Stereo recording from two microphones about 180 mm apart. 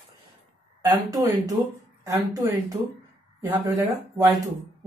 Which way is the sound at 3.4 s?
15° right (ahead or behind).